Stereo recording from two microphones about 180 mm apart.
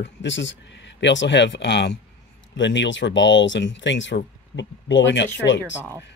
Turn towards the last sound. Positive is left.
turn(degrees=80)